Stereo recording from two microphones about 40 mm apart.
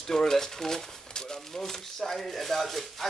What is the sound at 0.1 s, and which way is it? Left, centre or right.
A man's voice, centre.